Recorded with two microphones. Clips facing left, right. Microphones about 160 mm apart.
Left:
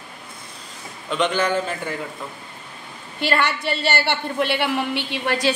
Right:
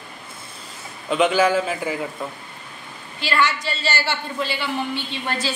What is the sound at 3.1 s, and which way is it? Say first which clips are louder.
A woman's voice: even; 60° left (ahead or behind).